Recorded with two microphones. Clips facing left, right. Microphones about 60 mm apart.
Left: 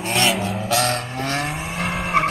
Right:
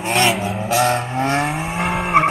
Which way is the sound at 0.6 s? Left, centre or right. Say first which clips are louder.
Right 4 dB; centre.